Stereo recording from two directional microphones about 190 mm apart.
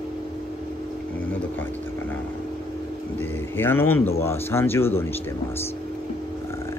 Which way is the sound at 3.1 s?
10° left (ahead or behind).